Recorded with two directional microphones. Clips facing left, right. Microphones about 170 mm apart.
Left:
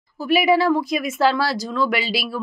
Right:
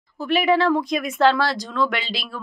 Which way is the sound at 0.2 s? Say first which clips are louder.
Left 2 dB; 10° left (ahead or behind).